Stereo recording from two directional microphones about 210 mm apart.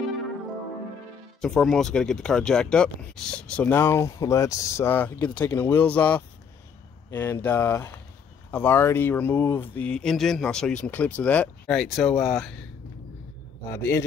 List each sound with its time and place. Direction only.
1.4 s speech: 5° left (ahead or behind)
13.7 s speech: 10° left (ahead or behind)